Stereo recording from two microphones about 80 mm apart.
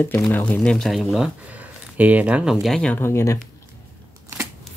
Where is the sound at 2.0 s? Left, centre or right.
Centre.